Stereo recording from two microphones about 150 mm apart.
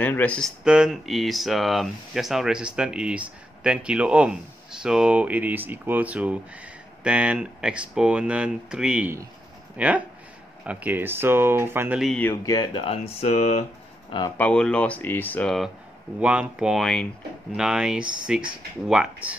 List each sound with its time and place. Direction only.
0.0 s speech: 10° left (ahead or behind)
0.7 s speech: 5° right (ahead or behind)
12.2 s speech: 15° left (ahead or behind)
12.5 s speech: 35° left (ahead or behind)
14.3 s speech: 5° left (ahead or behind)
16.2 s speech: 10° right (ahead or behind)